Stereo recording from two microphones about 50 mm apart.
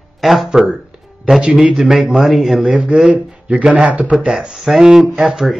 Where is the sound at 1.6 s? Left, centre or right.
Centre.